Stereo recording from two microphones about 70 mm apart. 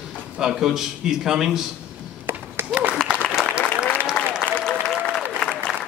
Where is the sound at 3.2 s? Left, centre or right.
Centre.